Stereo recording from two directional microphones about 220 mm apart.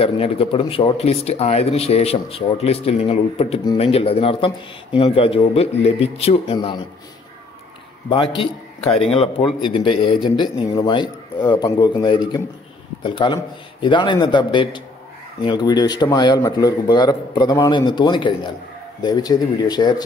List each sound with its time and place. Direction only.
0.0 s speech: 25° left (ahead or behind)
8.1 s speech: 20° left (ahead or behind)